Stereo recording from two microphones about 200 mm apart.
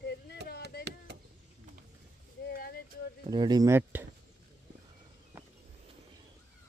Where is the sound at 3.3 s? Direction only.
20° right (ahead or behind).